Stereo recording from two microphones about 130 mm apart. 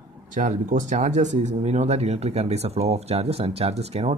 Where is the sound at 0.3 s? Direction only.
75° right (ahead or behind).